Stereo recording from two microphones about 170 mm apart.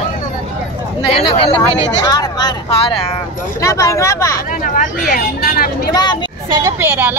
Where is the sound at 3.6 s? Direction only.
20° left (ahead or behind).